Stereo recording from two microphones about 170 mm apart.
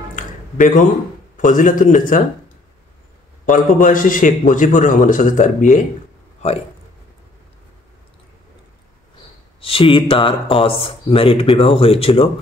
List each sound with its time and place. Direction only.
0.1 s a sound: 50° left (ahead or behind)
1.3 s a man's voice: 50° left (ahead or behind)
3.4 s a man's voice: 50° left (ahead or behind)
9.6 s speech: 30° left (ahead or behind)